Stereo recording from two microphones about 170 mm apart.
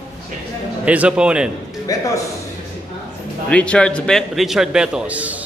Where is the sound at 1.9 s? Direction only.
20° left (ahead or behind).